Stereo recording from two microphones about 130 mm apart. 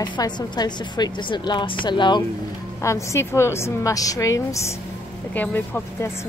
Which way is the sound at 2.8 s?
20° left (ahead or behind).